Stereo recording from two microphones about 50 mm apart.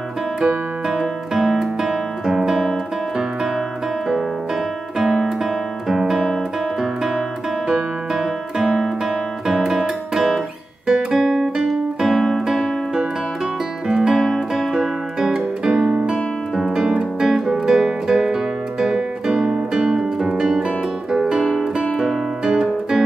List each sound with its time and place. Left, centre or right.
0.8 s music: centre
4.9 s music: centre
5.2 s guitar: centre
9.7 s music: centre
10.9 s guitar: centre
12.4 s music: centre
13.9 s music: centre
19.8 s harp: centre
21.1 s music: centre